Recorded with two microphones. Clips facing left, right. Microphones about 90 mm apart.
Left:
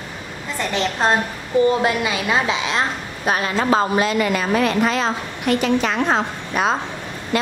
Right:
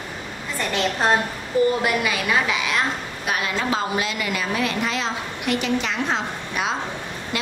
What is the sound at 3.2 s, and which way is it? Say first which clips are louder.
A woman's voice: left 5 dB; 35° left (ahead or behind).